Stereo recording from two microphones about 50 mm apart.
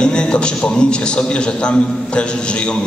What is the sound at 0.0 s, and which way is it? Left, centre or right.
A man's voice, centre.